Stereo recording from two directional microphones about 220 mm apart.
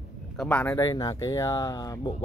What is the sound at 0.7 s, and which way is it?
Speech, 15° left (ahead or behind).